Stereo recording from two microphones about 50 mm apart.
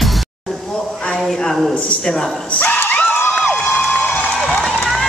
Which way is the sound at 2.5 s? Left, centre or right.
Left.